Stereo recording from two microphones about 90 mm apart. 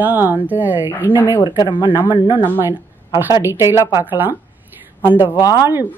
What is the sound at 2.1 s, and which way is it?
Speech, 60° left (ahead or behind).